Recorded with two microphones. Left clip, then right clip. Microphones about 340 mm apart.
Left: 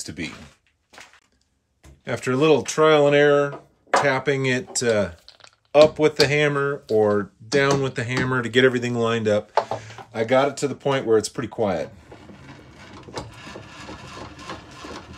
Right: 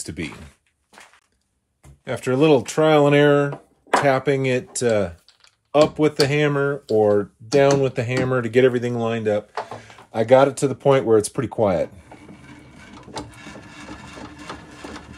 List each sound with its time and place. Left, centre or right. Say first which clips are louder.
0.0 s speech: right 1 dB; centre
2.0 s speech: right 1 dB; centre
10.1 s speech: right 5 dB; centre